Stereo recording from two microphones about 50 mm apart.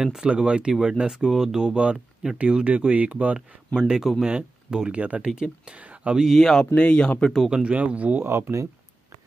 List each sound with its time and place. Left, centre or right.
0.0 s speech: centre; by 3.3 s right
3.3 s speech: centre
5.8 s a sound: right
6.3 s speech: centre
6.7 s speech: left
7.6 s speech: right
8.3 s speech: right